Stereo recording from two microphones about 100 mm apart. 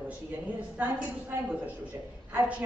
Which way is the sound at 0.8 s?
15° right (ahead or behind).